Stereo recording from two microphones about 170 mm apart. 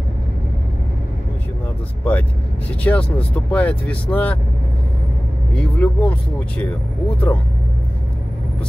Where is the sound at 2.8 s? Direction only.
10° left (ahead or behind).